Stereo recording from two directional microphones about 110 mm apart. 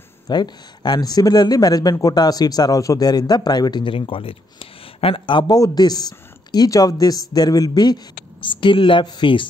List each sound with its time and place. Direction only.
0.3 s speech: 40° left (ahead or behind)